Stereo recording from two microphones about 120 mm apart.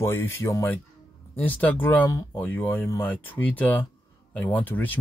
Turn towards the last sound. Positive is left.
turn(degrees=15)  # may be behind; listen again after turning